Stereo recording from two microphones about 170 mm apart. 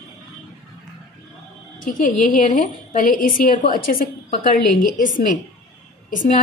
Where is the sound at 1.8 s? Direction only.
50° left (ahead or behind).